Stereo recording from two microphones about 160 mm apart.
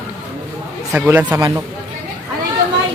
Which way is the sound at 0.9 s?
10° right (ahead or behind).